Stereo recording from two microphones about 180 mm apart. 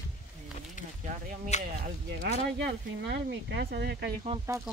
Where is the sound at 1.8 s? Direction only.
50° right (ahead or behind).